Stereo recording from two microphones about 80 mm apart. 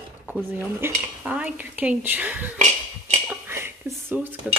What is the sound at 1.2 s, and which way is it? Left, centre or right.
Speech, centre.